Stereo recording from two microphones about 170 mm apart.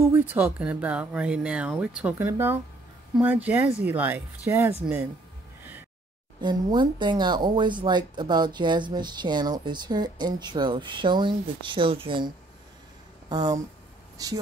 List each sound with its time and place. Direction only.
0.0 s speech: 10° right (ahead or behind)
6.4 s speech: 25° right (ahead or behind)
13.3 s speech: 25° right (ahead or behind)